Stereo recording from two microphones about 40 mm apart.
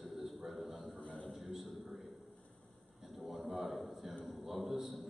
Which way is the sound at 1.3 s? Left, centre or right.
Centre.